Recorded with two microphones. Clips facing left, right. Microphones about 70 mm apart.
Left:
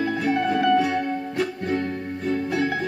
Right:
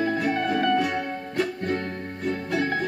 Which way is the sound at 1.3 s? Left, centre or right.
Right.